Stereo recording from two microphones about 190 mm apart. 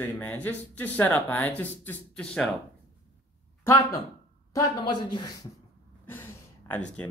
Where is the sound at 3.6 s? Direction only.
15° left (ahead or behind).